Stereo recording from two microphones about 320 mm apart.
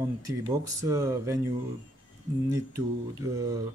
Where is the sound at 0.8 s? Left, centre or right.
Centre.